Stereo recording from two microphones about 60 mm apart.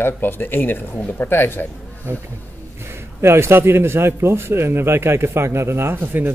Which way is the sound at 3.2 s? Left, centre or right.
Right.